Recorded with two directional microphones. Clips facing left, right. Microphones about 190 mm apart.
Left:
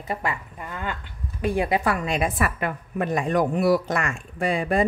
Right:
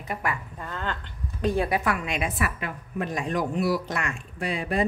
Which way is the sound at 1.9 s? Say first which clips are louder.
Left 4 dB; 35° left (ahead or behind).